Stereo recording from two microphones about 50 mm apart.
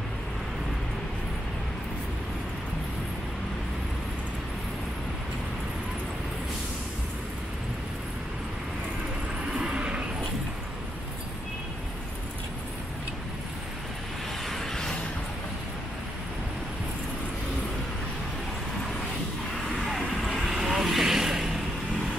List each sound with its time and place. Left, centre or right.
9.5 s vehicle: right
14.5 s a sound: centre
19.9 s vehicle: centre